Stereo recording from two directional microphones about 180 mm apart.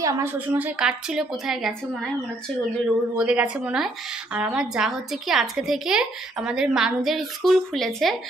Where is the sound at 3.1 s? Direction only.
5° right (ahead or behind).